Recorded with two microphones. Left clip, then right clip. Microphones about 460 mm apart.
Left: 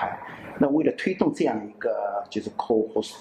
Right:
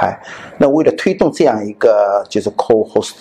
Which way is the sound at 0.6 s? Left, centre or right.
Right.